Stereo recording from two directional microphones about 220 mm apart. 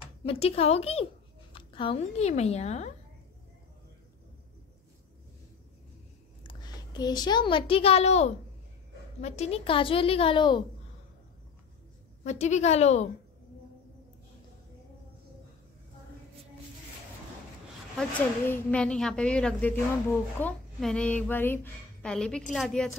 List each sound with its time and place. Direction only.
0.2 s a woman's voice: 25° left (ahead or behind)
6.4 s a woman's voice: 20° left (ahead or behind)
12.2 s a woman's voice: 30° left (ahead or behind)
17.9 s a woman's voice: 5° left (ahead or behind)